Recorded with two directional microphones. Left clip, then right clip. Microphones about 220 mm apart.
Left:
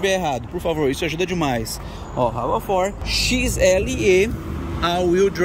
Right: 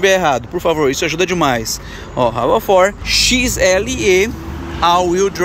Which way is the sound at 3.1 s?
Centre (ahead or behind).